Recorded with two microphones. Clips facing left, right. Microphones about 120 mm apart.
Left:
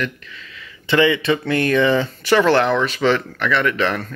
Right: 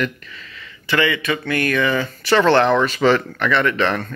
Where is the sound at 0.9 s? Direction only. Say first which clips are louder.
Left 4 dB; 20° left (ahead or behind).